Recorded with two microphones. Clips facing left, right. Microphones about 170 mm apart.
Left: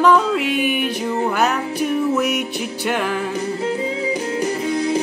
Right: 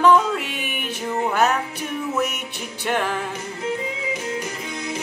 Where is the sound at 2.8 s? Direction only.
5° left (ahead or behind).